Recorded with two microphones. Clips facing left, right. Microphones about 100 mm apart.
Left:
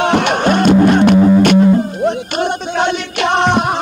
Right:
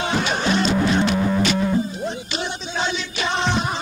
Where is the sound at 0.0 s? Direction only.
65° left (ahead or behind).